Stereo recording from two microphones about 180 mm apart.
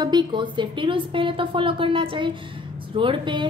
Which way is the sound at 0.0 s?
25° right (ahead or behind).